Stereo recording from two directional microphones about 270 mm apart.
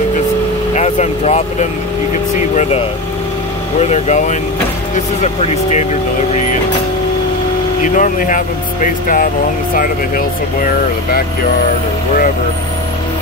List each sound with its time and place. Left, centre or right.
0.7 s speech: left
3.8 s speech: left
7.8 s speech: left